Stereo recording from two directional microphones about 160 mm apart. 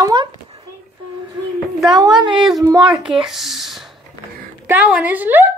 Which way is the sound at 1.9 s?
25° right (ahead or behind).